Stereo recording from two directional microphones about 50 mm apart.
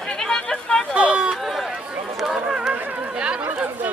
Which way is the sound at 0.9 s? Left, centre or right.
Right.